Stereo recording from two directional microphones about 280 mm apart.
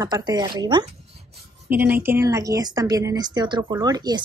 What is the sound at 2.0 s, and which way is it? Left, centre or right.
Speech, centre.